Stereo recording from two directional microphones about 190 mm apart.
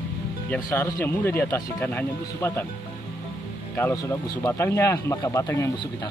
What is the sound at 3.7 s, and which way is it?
Speech, 15° left (ahead or behind).